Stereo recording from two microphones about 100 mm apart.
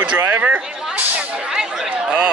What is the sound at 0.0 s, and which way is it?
Speech, 15° right (ahead or behind).